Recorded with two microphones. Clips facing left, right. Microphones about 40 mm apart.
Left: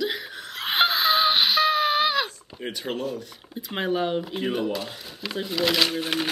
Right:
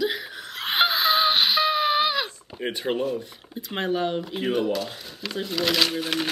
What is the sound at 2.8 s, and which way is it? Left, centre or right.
Speech, centre.